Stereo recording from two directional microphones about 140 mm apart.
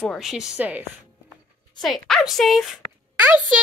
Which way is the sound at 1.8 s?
5° left (ahead or behind).